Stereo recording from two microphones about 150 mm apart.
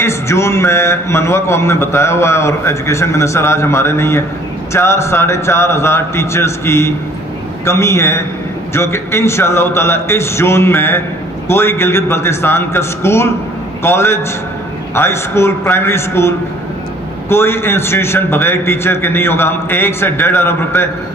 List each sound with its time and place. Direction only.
0.0 s a man's voice: 20° left (ahead or behind)